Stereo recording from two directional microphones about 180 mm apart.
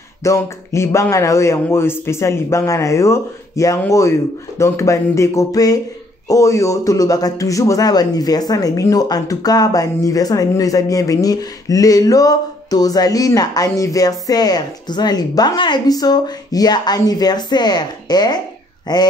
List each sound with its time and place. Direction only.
0.2 s a man's voice: 15° left (ahead or behind)